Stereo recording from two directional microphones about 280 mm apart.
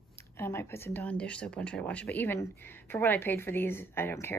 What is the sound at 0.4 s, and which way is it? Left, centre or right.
Speech, centre.